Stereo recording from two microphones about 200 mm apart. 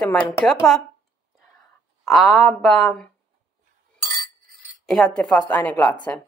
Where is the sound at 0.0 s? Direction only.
5° left (ahead or behind).